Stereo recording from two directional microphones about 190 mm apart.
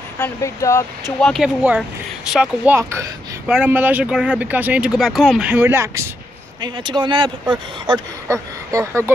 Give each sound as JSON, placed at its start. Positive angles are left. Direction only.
{"t": 0.2, "sound": "speech", "side_deg": 15}
{"t": 1.2, "sound": "speech", "side_deg": 0}
{"t": 6.6, "sound": "speech", "side_deg": -25}